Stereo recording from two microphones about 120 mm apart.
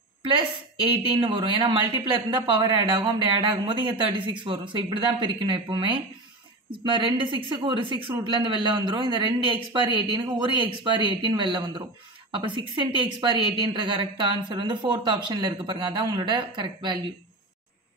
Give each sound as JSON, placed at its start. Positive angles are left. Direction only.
{"t": 0.8, "sound": "a woman's voice", "side_deg": -45}